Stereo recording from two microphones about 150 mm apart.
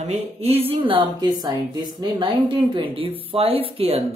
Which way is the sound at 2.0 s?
35° right (ahead or behind).